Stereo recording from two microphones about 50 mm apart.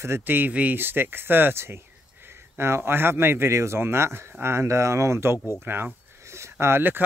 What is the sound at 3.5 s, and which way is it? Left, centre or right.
Speech, right.